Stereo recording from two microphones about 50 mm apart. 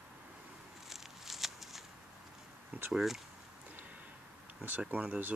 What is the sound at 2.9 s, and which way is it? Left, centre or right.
Speech, centre.